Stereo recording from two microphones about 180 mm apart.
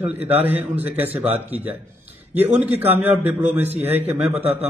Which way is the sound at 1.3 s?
35° right (ahead or behind).